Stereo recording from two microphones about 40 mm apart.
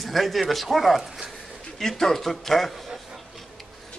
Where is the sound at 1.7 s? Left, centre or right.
Centre.